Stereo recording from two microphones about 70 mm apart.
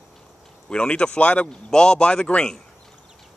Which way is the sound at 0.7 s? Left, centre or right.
Centre.